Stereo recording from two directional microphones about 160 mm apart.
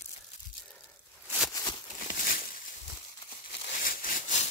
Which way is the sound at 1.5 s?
25° left (ahead or behind).